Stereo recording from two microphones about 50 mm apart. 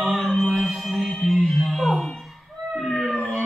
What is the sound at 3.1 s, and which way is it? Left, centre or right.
Howl, centre.